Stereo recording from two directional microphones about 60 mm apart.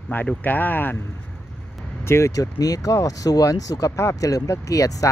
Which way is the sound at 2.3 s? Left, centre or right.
Left.